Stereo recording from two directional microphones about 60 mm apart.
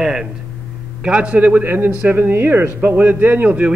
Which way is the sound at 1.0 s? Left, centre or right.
Centre.